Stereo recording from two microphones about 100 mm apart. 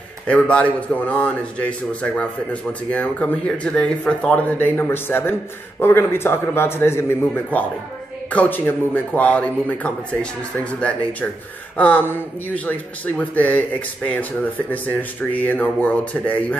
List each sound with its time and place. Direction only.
0.3 s a man's voice: 10° left (ahead or behind)